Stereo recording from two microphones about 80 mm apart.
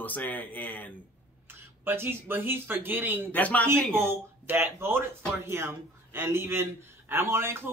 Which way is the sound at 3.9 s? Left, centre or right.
Right.